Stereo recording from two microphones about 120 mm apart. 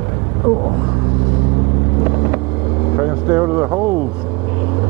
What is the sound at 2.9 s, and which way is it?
Vehicle, 20° right (ahead or behind).